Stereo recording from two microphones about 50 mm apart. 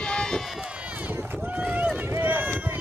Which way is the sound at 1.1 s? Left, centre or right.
Right.